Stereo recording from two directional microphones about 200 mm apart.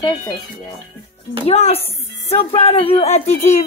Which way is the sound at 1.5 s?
30° left (ahead or behind).